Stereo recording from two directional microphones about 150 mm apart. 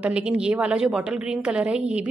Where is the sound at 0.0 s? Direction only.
10° right (ahead or behind).